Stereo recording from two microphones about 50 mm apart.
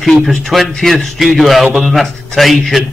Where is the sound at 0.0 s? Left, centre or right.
Centre.